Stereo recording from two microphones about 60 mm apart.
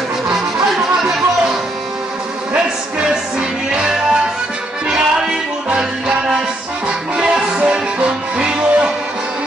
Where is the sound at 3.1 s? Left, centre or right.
Centre.